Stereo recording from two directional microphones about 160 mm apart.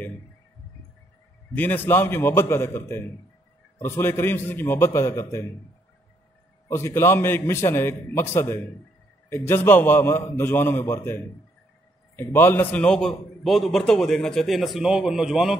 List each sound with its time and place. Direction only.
1.5 s a man's voice: 10° left (ahead or behind)
6.7 s a man's voice: 15° left (ahead or behind); by 15.5 s 5° right (ahead or behind)